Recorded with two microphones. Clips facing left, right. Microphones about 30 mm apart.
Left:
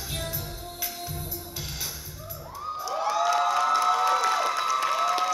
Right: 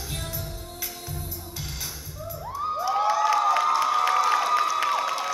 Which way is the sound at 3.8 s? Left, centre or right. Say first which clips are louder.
Right 1 dB; centre.